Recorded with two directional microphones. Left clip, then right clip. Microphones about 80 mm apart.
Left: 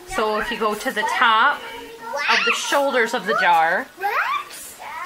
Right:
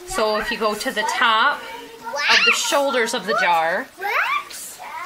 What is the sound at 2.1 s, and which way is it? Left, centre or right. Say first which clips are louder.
Speech: right 3 dB; left.